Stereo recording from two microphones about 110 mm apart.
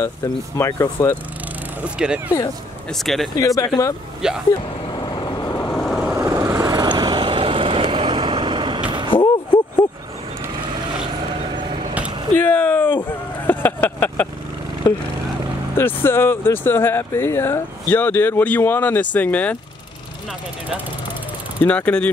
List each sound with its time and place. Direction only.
0.2 s speech: 30° left (ahead or behind)
2.0 s speech: 10° right (ahead or behind)
2.9 s speech: centre (ahead or behind)
3.3 s speech: 30° left (ahead or behind)
4.2 s speech: 5° right (ahead or behind)
4.9 s vehicle: 40° left (ahead or behind)
5.8 s vehicle: centre (ahead or behind)
6.1 s vehicle: 25° right (ahead or behind); by 8.8 s 45° right (ahead or behind)
9.1 s a sound: 50° left (ahead or behind)
11.5 s vehicle: 50° right (ahead or behind)
12.4 s a sound: 15° left (ahead or behind)
13.5 s vehicle: 15° left (ahead or behind)
15.7 s speech: 20° left (ahead or behind)
21.6 s speech: 10° left (ahead or behind)